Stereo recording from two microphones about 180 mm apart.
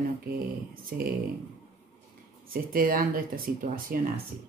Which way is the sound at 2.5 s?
50° right (ahead or behind).